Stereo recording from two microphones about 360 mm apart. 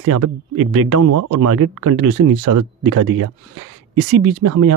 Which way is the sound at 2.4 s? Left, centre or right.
Right.